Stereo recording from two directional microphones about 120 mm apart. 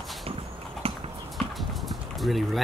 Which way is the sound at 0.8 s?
55° right (ahead or behind).